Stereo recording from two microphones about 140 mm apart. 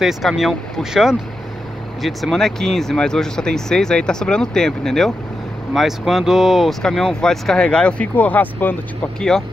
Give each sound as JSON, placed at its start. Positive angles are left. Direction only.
{"t": 0.0, "sound": "speech", "side_deg": 0}